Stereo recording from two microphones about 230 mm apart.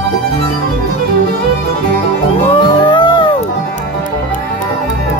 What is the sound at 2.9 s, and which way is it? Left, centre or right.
Music, centre.